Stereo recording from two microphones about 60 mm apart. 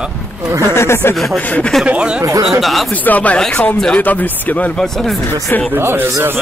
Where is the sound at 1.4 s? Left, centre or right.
Left.